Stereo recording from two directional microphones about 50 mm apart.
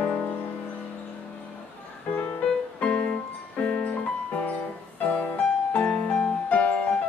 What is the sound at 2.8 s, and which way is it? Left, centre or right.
Music, left.